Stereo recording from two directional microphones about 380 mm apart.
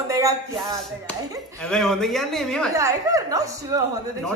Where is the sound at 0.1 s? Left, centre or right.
Centre.